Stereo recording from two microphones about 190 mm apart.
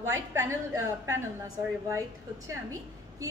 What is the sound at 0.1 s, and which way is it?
Speech, 15° right (ahead or behind).